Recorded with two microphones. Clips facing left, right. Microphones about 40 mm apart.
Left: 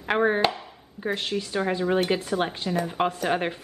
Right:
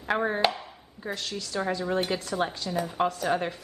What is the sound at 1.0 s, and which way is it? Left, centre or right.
Speech, left.